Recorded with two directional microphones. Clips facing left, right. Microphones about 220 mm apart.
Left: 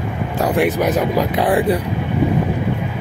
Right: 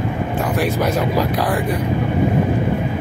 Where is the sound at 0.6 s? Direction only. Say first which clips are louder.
Left 3 dB; 15° left (ahead or behind).